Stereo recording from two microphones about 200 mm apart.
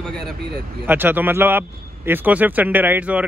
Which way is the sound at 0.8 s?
10° right (ahead or behind).